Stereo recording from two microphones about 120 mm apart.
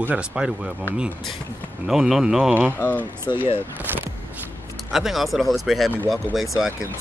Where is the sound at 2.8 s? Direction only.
15° left (ahead or behind).